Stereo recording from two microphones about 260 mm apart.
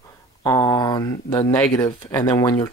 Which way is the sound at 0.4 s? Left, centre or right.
Centre.